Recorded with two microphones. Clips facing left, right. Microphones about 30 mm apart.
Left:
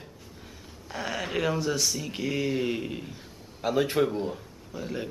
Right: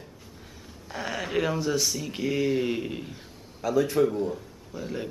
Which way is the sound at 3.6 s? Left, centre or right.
Left.